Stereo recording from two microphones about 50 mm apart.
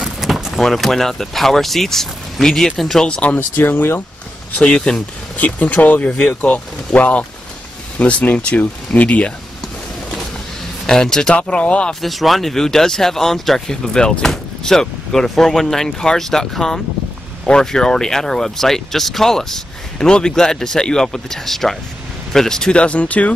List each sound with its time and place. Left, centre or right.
0.2 s speech: centre
3.1 s speech: left
3.3 s speech: left
4.6 s speech: centre
5.4 s speech: left
10.9 s speech: centre
11.3 s speech: left
11.9 s speech: centre; by 23.3 s left